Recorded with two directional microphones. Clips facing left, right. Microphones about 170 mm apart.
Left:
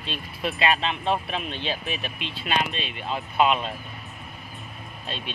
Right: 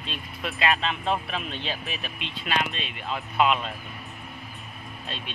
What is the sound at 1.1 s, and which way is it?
Speech, 30° left (ahead or behind).